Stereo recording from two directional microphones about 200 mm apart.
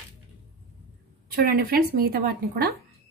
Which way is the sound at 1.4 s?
50° right (ahead or behind).